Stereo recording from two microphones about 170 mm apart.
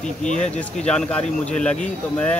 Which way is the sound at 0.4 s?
5° left (ahead or behind).